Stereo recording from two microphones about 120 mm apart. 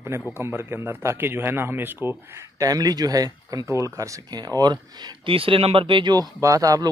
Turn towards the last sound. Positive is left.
turn(degrees=-30)  # may be behind; listen again after turning